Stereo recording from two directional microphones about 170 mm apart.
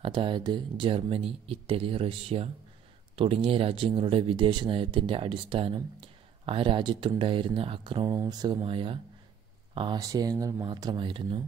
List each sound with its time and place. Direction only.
0.0 s speech: 30° right (ahead or behind)